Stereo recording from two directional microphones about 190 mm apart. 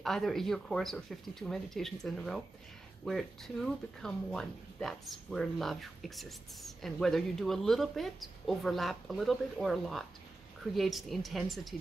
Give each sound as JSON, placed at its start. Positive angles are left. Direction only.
{"t": 0.0, "sound": "speech", "side_deg": 0}